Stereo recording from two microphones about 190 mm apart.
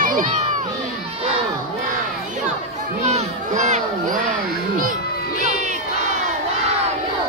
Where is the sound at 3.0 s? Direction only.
35° right (ahead or behind).